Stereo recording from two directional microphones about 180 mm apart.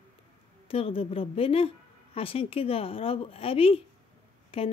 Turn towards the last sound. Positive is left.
turn(degrees=30)  # may be behind; listen again after turning